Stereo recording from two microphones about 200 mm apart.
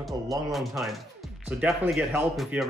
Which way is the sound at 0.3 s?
Centre (ahead or behind).